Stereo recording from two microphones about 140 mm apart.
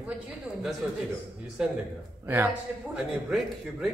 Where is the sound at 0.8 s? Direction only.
10° right (ahead or behind).